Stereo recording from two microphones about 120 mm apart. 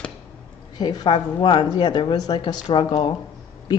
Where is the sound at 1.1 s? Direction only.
40° left (ahead or behind).